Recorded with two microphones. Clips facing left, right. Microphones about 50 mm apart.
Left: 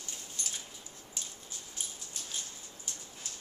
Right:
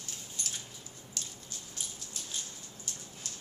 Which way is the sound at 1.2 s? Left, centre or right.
Centre.